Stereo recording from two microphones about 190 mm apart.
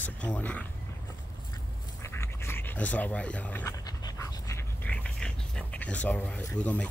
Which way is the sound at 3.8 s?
15° left (ahead or behind).